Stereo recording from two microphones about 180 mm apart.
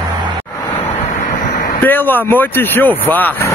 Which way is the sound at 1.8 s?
10° left (ahead or behind).